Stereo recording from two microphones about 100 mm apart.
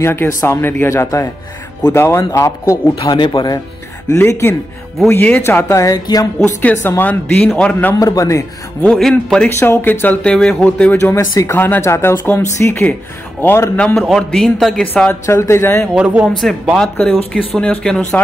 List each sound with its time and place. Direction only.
0.0 s speech: 25° left (ahead or behind)
3.1 s speech: 55° left (ahead or behind)
4.1 s speech: 30° left (ahead or behind)
6.4 s speech: 20° left (ahead or behind)
8.0 s speech: 35° left (ahead or behind)
8.8 s speech: 5° left (ahead or behind)
9.6 s speech: 25° left (ahead or behind)
11.0 s speech: 30° left (ahead or behind)
13.7 s a man's voice: 5° left (ahead or behind)
15.2 s speech: 30° left (ahead or behind)
16.0 s speech: 15° right (ahead or behind)
17.3 s speech: 10° left (ahead or behind)